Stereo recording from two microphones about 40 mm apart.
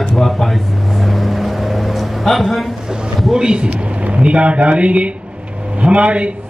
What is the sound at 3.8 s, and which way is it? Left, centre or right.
Speech, right.